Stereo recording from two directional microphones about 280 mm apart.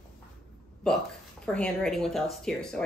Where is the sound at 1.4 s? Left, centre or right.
Centre.